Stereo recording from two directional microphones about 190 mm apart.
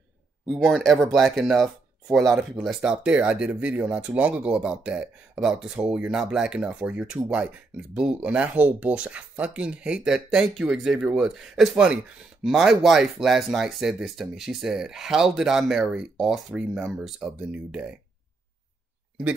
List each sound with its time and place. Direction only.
0.6 s speech: centre (ahead or behind)